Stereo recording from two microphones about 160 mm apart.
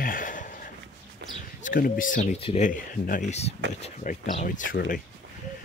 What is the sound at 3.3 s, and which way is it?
Speech, 40° left (ahead or behind).